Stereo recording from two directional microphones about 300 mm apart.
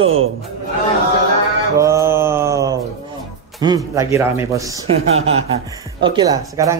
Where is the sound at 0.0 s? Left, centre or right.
Right.